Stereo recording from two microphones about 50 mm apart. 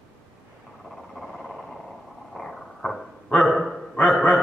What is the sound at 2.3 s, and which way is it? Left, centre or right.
Dog, centre.